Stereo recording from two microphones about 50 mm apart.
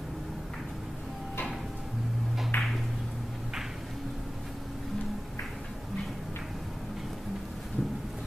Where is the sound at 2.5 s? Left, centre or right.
Left.